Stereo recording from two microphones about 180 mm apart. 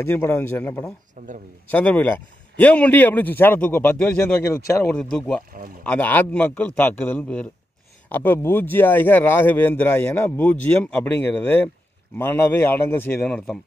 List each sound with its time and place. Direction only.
0.0 s speech: 10° left (ahead or behind)
1.2 s speech: 45° right (ahead or behind)
1.7 s speech: 10° left (ahead or behind)